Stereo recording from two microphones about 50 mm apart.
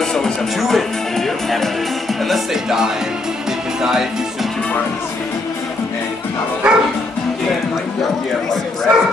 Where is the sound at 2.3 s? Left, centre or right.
Centre.